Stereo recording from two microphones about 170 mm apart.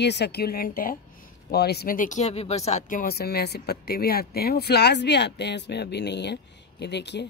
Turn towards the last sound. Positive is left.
turn(degrees=85)